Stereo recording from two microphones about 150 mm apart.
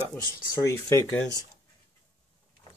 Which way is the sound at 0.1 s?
20° left (ahead or behind).